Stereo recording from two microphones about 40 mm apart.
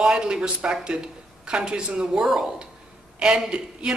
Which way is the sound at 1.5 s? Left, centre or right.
Right.